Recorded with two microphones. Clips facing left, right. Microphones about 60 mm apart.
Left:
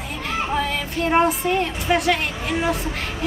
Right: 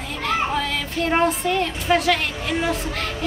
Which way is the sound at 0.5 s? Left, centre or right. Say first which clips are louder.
Left 1 dB; centre.